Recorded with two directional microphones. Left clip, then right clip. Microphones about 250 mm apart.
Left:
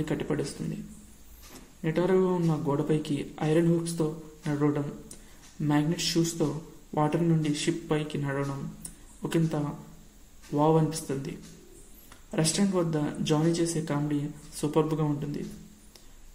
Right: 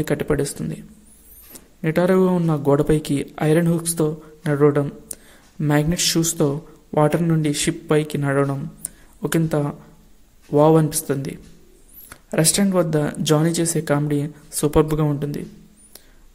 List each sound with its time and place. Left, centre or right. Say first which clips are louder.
0.0 s speech: right 9 dB; right
1.8 s speech: right 8 dB; right